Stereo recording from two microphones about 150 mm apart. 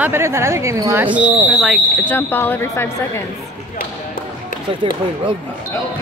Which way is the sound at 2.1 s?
15° left (ahead or behind).